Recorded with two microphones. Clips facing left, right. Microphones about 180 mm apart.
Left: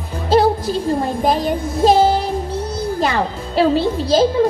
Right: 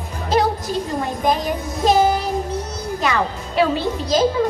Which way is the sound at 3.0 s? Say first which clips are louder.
Even; 30° left (ahead or behind).